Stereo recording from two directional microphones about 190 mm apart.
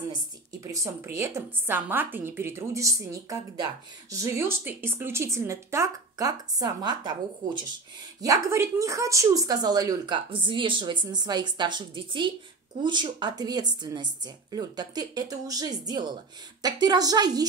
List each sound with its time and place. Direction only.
0.5 s speech: 15° right (ahead or behind)